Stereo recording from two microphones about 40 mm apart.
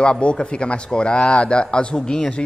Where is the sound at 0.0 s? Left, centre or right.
Left.